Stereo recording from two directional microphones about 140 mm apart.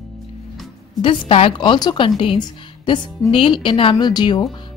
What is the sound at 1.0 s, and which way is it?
A woman's voice, 40° left (ahead or behind).